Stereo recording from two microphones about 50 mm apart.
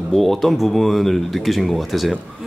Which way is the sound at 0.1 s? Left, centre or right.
Centre.